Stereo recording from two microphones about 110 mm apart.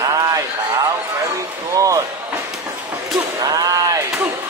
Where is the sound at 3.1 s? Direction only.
35° right (ahead or behind).